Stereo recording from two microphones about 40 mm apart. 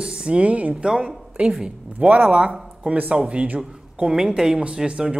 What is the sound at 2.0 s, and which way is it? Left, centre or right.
Speech, right.